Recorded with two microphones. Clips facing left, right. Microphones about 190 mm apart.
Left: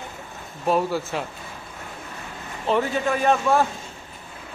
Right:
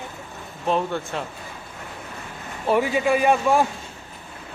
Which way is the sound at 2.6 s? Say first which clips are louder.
Right 2 dB; 10° right (ahead or behind).